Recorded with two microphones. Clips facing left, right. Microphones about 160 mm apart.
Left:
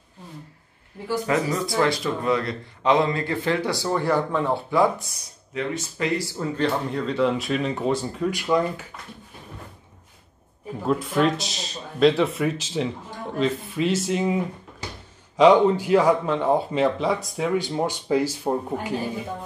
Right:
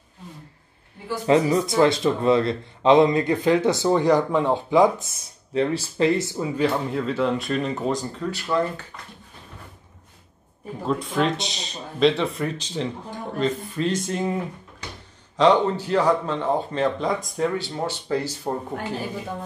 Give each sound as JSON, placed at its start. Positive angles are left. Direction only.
{"t": 1.2, "sound": "a man's voice", "side_deg": -25}
{"t": 5.5, "sound": "a man's voice", "side_deg": -30}
{"t": 6.5, "sound": "speech", "side_deg": -5}
{"t": 10.9, "sound": "speech", "side_deg": 0}
{"t": 17.6, "sound": "speech", "side_deg": 15}